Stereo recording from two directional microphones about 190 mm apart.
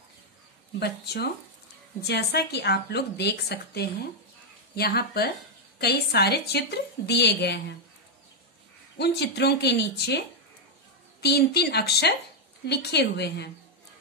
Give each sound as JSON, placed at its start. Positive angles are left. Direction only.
{"t": 0.7, "sound": "a woman's voice", "side_deg": 60}
{"t": 8.9, "sound": "a woman's voice", "side_deg": 60}